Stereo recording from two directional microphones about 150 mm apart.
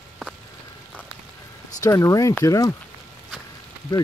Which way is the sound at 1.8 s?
20° left (ahead or behind).